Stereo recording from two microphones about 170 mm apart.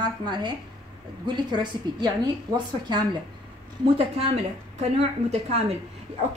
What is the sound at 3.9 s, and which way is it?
Speech, 35° right (ahead or behind).